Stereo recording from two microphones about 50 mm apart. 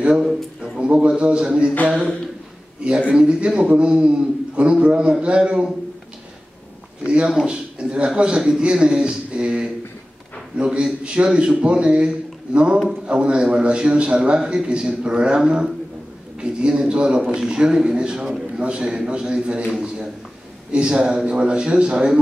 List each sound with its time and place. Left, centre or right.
0.0 s a man's voice: centre
3.1 s a man's voice: right
7.0 s a man's voice: right